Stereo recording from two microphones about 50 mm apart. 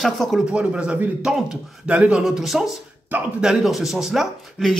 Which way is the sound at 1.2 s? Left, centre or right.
Centre.